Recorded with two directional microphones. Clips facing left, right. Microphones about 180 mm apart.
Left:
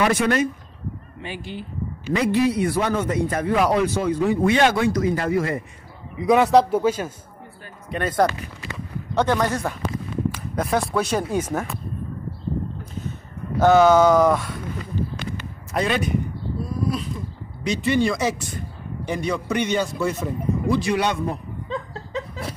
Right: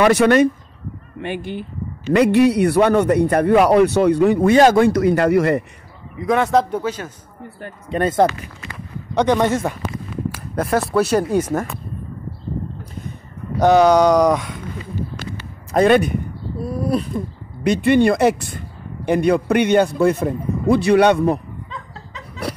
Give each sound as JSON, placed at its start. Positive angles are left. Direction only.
{"t": 0.0, "sound": "a man's voice", "side_deg": -75}
{"t": 1.2, "sound": "a man's voice", "side_deg": -55}
{"t": 2.1, "sound": "a man's voice", "side_deg": -70}
{"t": 4.5, "sound": "speech", "side_deg": -45}
{"t": 4.8, "sound": "a man's voice", "side_deg": -65}
{"t": 6.2, "sound": "a man's voice", "side_deg": 0}
{"t": 7.9, "sound": "speech", "side_deg": -30}
{"t": 9.1, "sound": "speech", "side_deg": -15}
{"t": 10.3, "sound": "speech", "side_deg": -5}
{"t": 13.6, "sound": "speech", "side_deg": -15}
{"t": 15.7, "sound": "a man's voice", "side_deg": -55}